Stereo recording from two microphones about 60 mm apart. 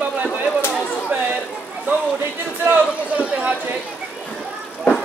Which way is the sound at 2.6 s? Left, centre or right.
Right.